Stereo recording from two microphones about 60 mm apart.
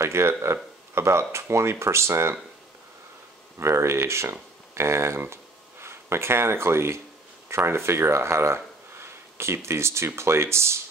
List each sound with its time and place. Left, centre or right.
0.0 s speech: right
3.5 s speech: right